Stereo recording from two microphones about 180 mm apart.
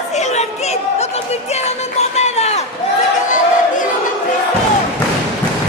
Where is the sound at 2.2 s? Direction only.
35° left (ahead or behind).